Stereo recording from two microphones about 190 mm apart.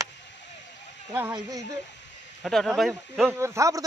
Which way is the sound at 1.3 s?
20° right (ahead or behind).